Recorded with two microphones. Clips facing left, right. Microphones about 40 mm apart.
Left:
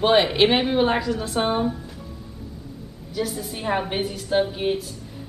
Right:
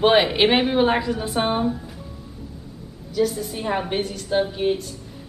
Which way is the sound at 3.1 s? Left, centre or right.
Centre.